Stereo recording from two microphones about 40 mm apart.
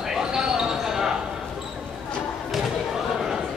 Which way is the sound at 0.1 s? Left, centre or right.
Centre.